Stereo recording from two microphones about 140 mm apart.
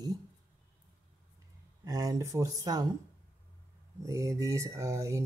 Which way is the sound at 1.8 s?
25° right (ahead or behind).